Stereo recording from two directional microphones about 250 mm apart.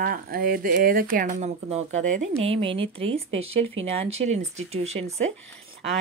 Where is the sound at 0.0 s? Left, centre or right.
Right.